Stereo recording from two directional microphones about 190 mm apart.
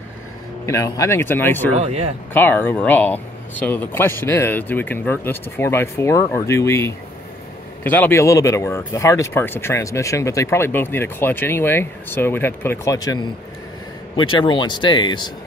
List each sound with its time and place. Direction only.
0.7 s speech: 15° left (ahead or behind)
1.7 s speech: 35° right (ahead or behind)
2.3 s speech: 10° left (ahead or behind)
14.4 s speech: 25° left (ahead or behind)